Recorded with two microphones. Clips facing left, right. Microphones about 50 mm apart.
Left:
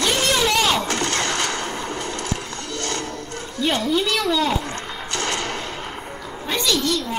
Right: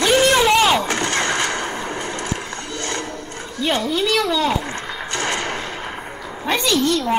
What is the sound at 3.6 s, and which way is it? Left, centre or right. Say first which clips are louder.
Speech: right 1 dB; centre.